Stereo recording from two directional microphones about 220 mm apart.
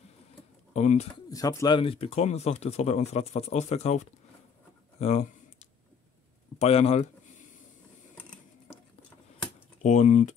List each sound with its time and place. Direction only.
0.7 s speech: 30° left (ahead or behind)
1.3 s speech: 15° left (ahead or behind); by 4.1 s 30° left (ahead or behind)
4.9 s a sound: 30° left (ahead or behind)
6.6 s speech: 30° left (ahead or behind)
9.8 s speech: 35° left (ahead or behind)